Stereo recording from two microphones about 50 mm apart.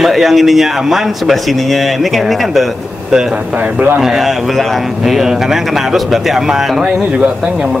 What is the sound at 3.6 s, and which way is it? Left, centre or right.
Speech, right.